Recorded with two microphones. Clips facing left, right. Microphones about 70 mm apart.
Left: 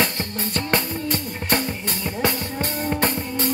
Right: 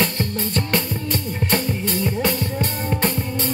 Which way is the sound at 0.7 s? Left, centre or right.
Centre.